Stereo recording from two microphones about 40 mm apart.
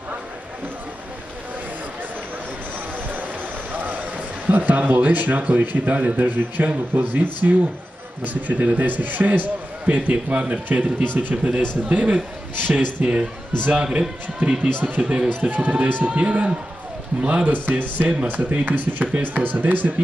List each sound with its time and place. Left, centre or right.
4.5 s a man's voice: right
9.8 s a man's voice: right
17.5 s a man's voice: right